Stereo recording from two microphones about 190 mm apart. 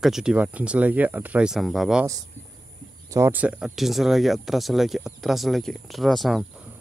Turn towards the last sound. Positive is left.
turn(degrees=0)  # may be behind; listen again after turning